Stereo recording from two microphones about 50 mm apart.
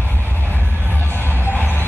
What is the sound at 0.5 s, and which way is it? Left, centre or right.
Vehicle, left.